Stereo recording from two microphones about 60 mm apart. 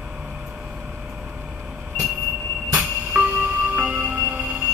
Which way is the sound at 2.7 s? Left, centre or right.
Right.